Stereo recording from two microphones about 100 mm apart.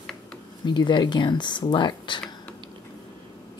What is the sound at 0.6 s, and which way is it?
Speech, 50° left (ahead or behind).